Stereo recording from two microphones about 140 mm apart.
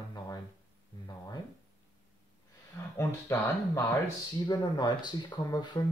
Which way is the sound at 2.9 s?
20° left (ahead or behind).